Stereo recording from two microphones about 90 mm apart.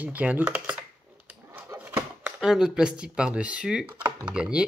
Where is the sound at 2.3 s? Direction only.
5° right (ahead or behind).